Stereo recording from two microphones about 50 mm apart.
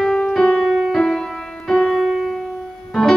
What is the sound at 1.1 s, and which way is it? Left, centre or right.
Music, centre.